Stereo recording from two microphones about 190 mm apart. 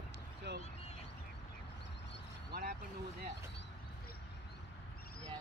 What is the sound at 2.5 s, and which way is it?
Vehicle, 50° right (ahead or behind).